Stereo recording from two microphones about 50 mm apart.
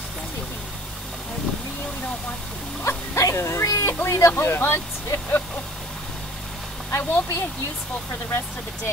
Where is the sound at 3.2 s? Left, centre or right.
Left.